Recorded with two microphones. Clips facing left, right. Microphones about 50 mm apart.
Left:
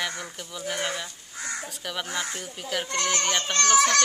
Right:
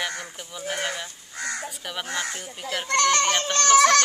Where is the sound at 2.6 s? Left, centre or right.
Right.